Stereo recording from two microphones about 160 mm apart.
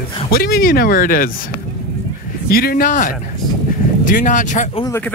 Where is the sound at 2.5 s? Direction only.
70° left (ahead or behind); by 4.8 s 50° left (ahead or behind).